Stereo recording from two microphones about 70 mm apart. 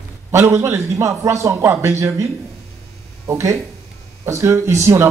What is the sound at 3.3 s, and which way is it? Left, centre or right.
A man's voice, right.